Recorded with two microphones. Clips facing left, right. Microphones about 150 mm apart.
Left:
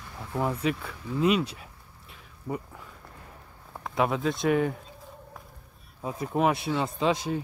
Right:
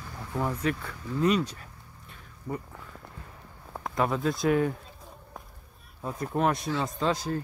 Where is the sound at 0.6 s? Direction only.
5° left (ahead or behind).